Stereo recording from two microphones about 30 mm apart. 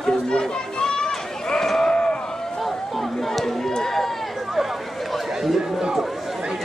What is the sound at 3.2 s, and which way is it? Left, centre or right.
Run, centre.